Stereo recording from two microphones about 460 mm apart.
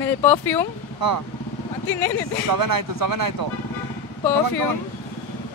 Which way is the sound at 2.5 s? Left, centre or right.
Right.